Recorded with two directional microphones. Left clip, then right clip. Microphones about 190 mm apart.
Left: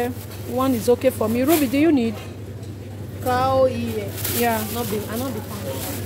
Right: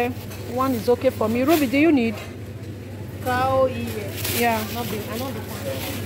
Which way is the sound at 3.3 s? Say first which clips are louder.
Left 2 dB; 55° left (ahead or behind).